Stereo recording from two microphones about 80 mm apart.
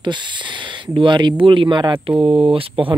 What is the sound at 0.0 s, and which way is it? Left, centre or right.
Speech, right.